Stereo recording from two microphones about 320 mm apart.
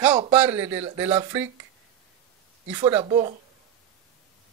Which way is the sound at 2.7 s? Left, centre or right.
Centre.